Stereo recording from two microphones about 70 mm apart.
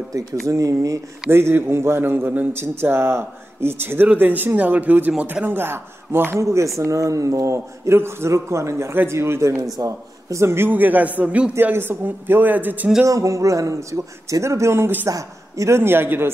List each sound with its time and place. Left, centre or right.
0.5 s a man's voice: right
1.3 s speech: right
6.4 s a man's voice: right
10.7 s speech: right
11.7 s speech: right
13.0 s a man's voice: right
15.0 s speech: right